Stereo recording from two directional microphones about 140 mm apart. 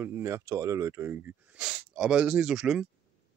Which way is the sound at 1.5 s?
5° right (ahead or behind).